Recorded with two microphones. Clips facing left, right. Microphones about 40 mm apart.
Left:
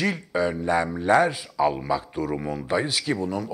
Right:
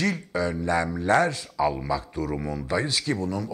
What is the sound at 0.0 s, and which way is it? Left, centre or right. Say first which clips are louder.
Speech: left 2 dB; centre.